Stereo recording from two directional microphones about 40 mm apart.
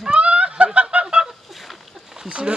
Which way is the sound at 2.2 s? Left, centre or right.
Right.